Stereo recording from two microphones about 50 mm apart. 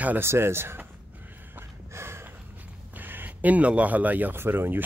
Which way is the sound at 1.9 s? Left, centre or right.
Right.